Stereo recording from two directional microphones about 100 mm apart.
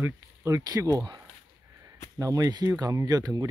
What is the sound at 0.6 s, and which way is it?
Speech, 40° right (ahead or behind).